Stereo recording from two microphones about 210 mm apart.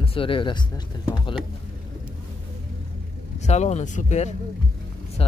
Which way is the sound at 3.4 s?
30° left (ahead or behind).